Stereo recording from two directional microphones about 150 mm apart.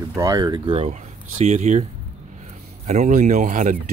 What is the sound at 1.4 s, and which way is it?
Speech, 50° right (ahead or behind).